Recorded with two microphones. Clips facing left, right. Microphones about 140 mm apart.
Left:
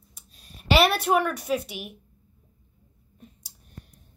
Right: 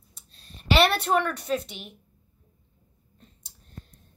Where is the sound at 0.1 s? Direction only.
10° left (ahead or behind).